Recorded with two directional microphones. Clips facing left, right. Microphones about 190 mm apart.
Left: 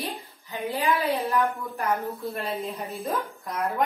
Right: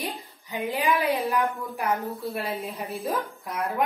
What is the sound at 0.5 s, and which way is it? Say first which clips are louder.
Speech: right 1 dB; 15° right (ahead or behind).